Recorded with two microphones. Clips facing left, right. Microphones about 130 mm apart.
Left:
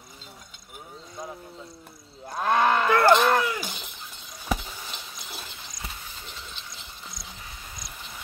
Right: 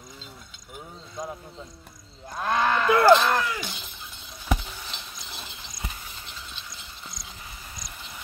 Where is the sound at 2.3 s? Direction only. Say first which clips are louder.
Left 2 dB; 10° left (ahead or behind).